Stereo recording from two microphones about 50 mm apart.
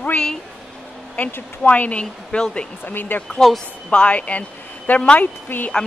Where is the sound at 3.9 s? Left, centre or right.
Left.